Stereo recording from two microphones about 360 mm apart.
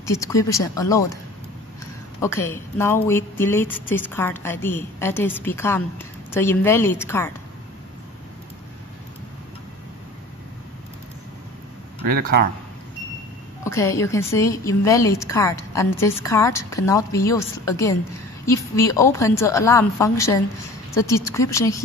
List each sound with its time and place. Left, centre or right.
0.0 s a woman's voice: centre
2.2 s a woman's voice: centre
12.1 s speech: right
13.7 s a woman's voice: centre